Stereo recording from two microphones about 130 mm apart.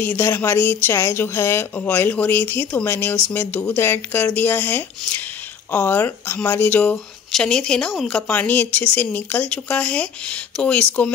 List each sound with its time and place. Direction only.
0.0 s speech: 15° left (ahead or behind)